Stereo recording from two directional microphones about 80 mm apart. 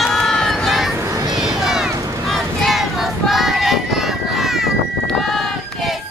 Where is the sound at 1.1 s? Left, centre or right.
Right.